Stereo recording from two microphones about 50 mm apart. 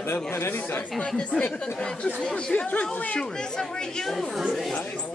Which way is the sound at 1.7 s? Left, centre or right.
Centre.